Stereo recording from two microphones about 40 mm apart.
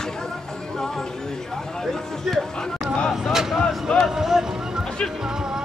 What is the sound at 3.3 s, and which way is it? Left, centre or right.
Speech, centre.